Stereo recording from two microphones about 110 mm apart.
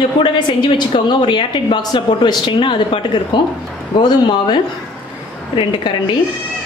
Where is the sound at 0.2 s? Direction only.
45° left (ahead or behind).